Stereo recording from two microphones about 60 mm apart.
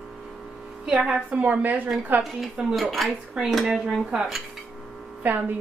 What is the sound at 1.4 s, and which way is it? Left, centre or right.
Speech, right.